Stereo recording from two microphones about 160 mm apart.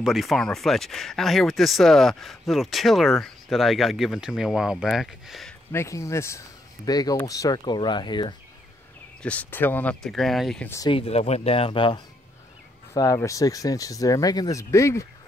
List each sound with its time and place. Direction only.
0.0 s speech: centre (ahead or behind)
5.7 s speech: 15° left (ahead or behind)
9.2 s speech: 10° left (ahead or behind)
10.9 s speech: 40° left (ahead or behind); by 15.0 s 20° left (ahead or behind)